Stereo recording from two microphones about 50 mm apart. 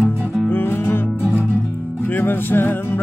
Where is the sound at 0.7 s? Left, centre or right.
Left.